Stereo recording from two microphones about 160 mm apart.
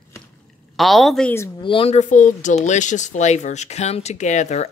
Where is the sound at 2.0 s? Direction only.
50° left (ahead or behind).